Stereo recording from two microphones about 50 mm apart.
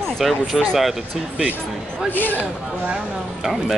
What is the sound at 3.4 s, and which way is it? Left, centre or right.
Speech, centre.